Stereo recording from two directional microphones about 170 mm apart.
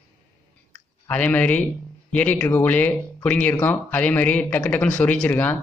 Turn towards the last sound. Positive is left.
turn(degrees=10)  # may be behind; listen again after turning